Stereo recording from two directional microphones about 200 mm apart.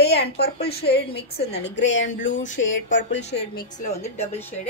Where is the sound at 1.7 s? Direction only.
65° left (ahead or behind).